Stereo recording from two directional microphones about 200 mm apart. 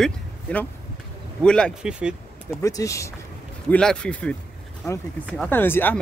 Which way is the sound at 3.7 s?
5° left (ahead or behind).